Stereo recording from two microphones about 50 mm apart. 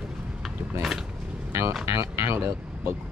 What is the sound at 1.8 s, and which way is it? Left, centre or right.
Music, right.